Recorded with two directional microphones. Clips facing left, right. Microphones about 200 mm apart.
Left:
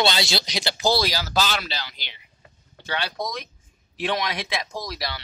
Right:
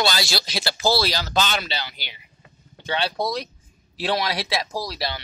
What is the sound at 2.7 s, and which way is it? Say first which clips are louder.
A man's voice: right 4 dB; 25° right (ahead or behind).